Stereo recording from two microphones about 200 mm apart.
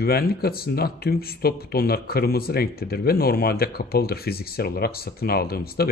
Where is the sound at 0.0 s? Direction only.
50° left (ahead or behind).